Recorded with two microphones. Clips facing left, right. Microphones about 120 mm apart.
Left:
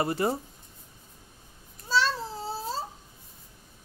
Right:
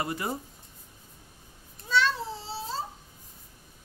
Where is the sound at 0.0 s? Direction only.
30° left (ahead or behind).